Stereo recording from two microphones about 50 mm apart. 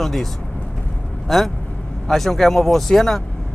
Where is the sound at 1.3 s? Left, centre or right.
Centre.